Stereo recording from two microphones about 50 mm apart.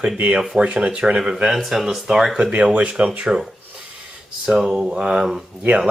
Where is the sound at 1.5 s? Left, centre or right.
Centre.